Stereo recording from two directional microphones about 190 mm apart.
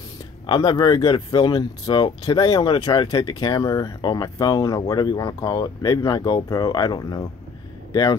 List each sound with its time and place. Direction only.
0.5 s speech: 20° left (ahead or behind)